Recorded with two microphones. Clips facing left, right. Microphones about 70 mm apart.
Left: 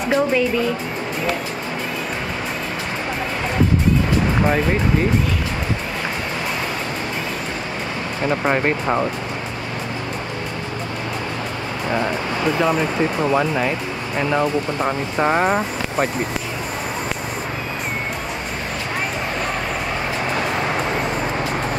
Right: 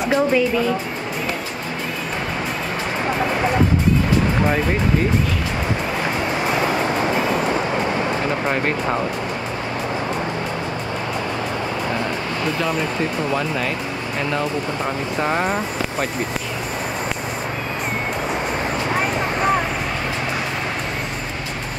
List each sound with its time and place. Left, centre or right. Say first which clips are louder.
0.1 s speech: even; centre
13.3 s speech: left 3 dB; centre